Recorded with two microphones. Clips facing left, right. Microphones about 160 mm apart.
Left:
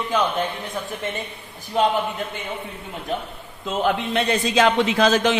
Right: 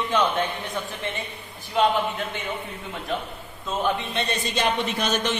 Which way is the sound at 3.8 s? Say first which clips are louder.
Left 6 dB; 90° left.